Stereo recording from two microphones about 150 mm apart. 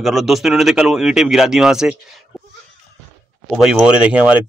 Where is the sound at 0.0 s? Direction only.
Centre (ahead or behind).